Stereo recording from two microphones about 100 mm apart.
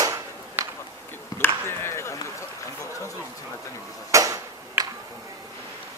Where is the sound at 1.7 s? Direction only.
25° left (ahead or behind).